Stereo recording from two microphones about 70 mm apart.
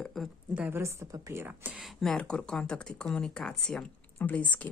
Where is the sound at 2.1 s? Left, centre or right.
Centre.